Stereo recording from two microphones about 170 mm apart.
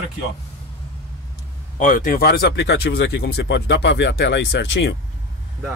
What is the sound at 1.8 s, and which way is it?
Speech, 55° left (ahead or behind).